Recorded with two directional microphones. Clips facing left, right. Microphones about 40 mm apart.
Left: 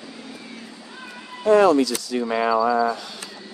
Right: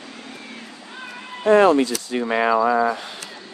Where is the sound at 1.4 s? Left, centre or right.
Right.